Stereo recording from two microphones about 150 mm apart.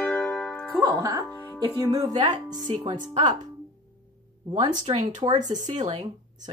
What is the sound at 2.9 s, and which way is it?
Speech, 55° right (ahead or behind).